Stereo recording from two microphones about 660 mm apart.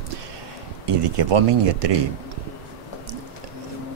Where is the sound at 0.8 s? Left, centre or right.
Right.